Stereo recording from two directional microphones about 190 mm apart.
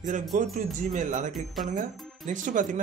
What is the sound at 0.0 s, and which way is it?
A man's voice, 40° right (ahead or behind).